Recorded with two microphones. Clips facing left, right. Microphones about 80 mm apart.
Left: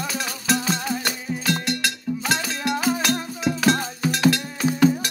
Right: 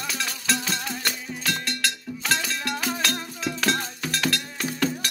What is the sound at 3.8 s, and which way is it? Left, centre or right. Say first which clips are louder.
Cowbell: left 7 dB; centre.